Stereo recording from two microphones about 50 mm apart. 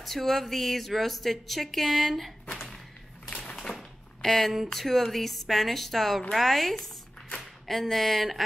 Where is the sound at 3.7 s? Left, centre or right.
Left.